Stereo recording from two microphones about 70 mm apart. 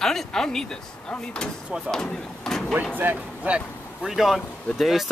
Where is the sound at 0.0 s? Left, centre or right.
Centre.